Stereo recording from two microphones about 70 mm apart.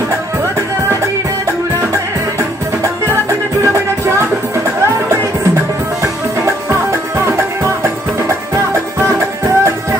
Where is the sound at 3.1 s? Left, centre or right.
Right.